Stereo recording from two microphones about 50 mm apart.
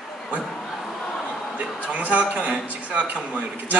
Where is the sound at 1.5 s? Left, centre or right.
Right.